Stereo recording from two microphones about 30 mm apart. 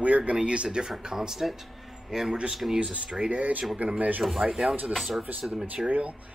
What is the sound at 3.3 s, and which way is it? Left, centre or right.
Speech, right.